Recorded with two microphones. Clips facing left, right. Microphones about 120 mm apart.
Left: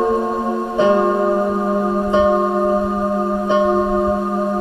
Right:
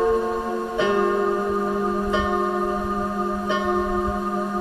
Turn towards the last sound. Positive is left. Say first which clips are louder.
# left 6 dB
turn(degrees=25)  # may be behind; listen again after turning